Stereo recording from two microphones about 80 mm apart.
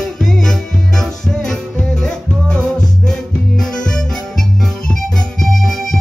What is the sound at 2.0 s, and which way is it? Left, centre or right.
Music, centre.